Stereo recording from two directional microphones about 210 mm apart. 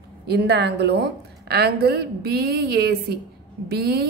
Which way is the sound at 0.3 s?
55° right (ahead or behind).